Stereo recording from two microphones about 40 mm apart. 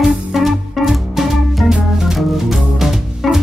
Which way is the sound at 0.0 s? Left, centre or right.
Centre.